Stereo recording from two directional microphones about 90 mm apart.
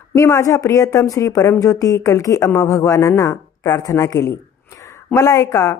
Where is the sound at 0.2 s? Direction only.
35° left (ahead or behind).